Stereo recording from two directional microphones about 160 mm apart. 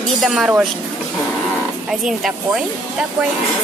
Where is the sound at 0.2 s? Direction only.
5° right (ahead or behind).